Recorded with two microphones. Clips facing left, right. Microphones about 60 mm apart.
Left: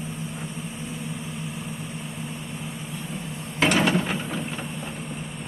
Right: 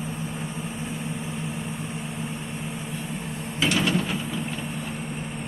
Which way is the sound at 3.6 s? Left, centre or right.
Left.